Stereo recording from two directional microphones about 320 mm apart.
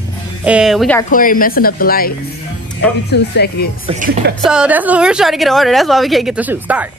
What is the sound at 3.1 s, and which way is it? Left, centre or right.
Speech, left.